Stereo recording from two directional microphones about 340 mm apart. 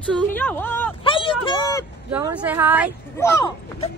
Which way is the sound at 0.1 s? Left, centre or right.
Centre.